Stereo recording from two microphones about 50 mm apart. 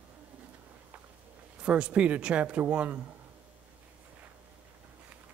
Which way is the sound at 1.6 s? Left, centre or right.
Right.